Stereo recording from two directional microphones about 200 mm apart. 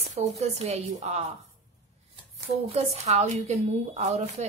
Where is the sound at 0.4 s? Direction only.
35° right (ahead or behind).